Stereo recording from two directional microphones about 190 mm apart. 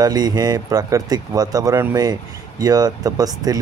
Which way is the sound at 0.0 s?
20° right (ahead or behind).